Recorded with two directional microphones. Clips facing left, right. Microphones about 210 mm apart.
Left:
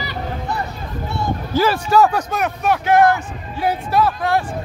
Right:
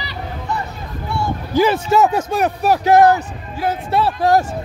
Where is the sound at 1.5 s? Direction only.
20° right (ahead or behind); by 3.1 s 35° right (ahead or behind).